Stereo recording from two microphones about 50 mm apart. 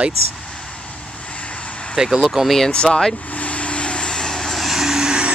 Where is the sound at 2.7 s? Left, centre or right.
Centre.